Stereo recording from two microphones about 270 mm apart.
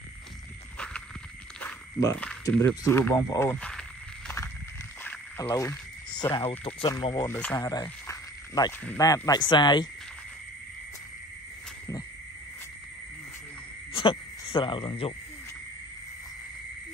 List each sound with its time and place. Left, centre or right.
1.6 s speech: centre
5.0 s speech: centre
13.9 s speech: centre